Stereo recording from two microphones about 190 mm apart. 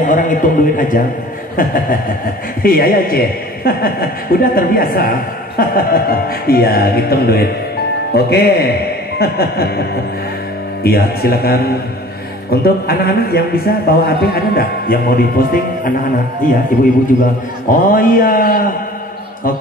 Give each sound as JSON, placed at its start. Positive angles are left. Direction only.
{"t": 0.0, "sound": "a sound", "side_deg": 45}
{"t": 1.6, "sound": "a man's voice", "side_deg": 45}
{"t": 17.6, "sound": "a man's voice", "side_deg": 50}